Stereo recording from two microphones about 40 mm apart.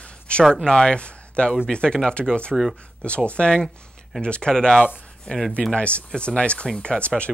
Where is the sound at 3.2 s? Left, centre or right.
Left.